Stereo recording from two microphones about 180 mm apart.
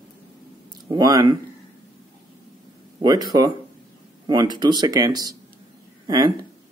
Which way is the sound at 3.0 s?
20° right (ahead or behind).